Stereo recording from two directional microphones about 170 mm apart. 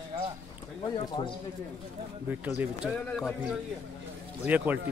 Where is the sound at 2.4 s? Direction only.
5° right (ahead or behind).